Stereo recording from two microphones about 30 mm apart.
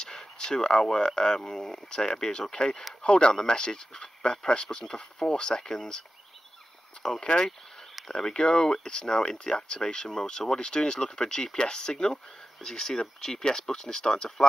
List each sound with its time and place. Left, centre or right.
0.0 s speech: left
5.6 s speech: centre
7.0 s speech: left